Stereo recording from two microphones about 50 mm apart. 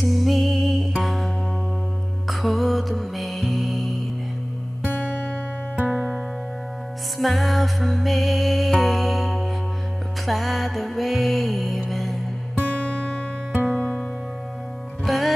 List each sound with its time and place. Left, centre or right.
0.0 s music: centre
5.1 s music: centre
12.8 s music: centre
15.0 s music: centre